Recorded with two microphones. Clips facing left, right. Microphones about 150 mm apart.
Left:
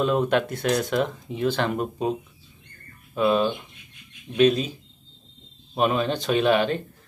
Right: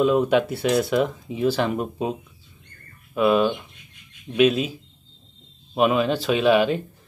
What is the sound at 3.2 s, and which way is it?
Speech, 5° right (ahead or behind).